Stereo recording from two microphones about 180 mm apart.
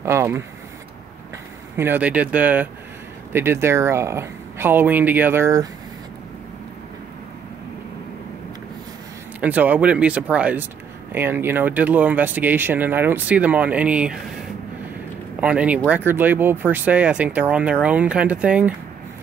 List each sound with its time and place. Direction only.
0.0 s speech: 15° right (ahead or behind)
1.8 s speech: 10° right (ahead or behind)
9.4 s speech: 10° right (ahead or behind)
15.4 s speech: 5° right (ahead or behind)